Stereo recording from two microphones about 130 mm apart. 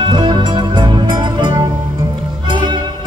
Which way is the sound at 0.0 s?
35° right (ahead or behind).